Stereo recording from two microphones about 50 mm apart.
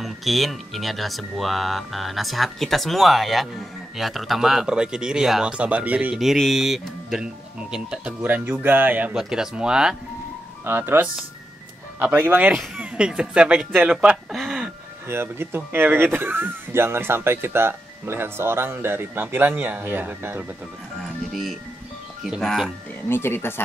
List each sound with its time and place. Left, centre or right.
0.0 s speech: centre; by 6.1 s right
6.1 s speech: centre
7.7 s speech: centre
8.2 s speech: right
9.1 s speech: centre
10.6 s speech: right
12.8 s speech: right
14.3 s a sound: centre
15.0 s speech: right
21.0 s music: centre
23.0 s speech: left